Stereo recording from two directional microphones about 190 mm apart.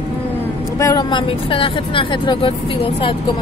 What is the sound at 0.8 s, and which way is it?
Speech, 20° left (ahead or behind).